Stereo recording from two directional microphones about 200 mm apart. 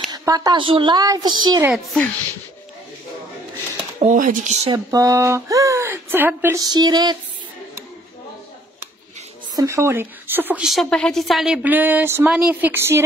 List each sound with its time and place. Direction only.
0.1 s a woman's voice: 15° right (ahead or behind)
1.6 s a child's voice: centre (ahead or behind)
4.0 s speech: 40° right (ahead or behind)
4.7 s speech: 15° right (ahead or behind)
9.6 s speech: 15° right (ahead or behind)